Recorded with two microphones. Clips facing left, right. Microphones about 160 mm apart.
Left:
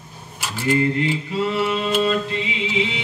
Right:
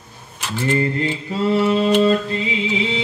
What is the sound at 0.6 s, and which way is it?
Mantra, 30° right (ahead or behind).